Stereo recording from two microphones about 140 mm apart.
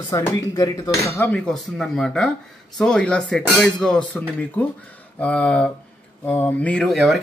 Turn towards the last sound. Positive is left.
turn(degrees=0)  # may be behind; listen again after turning